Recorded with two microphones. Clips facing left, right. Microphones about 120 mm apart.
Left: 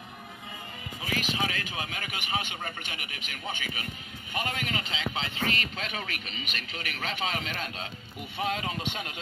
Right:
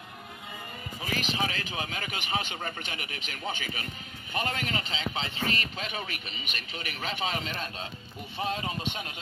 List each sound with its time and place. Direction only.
1.0 s speech: 30° right (ahead or behind)